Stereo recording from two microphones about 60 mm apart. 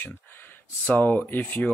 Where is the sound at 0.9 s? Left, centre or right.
Left.